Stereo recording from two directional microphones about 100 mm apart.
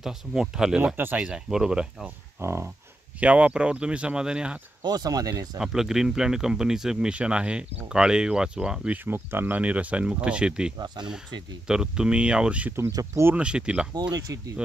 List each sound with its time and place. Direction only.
0.0 s speech: 5° right (ahead or behind)
2.4 s speech: 25° right (ahead or behind)
3.2 s speech: 15° right (ahead or behind)
4.8 s speech: 40° right (ahead or behind)
5.6 s speech: 5° right (ahead or behind)
14.1 s speech: 35° right (ahead or behind)